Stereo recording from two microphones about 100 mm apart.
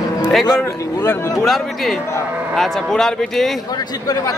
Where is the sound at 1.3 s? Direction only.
Centre (ahead or behind).